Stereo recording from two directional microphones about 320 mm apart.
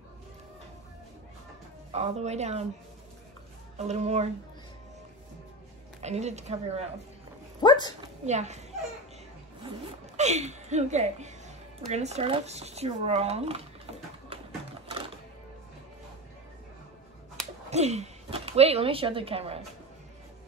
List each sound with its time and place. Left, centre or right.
1.9 s speech: centre
3.7 s speech: right
6.0 s speech: right
7.6 s speech: centre
8.3 s speech: right
9.7 s speech: right
17.6 s speech: right